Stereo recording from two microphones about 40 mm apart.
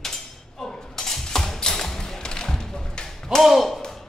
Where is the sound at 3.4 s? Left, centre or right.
Centre.